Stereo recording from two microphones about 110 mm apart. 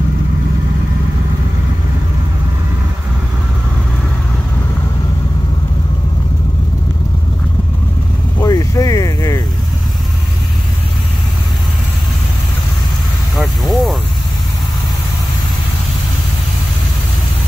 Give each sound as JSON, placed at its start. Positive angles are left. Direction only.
{"t": 8.4, "sound": "vehicle", "side_deg": 35}
{"t": 13.4, "sound": "vehicle", "side_deg": 0}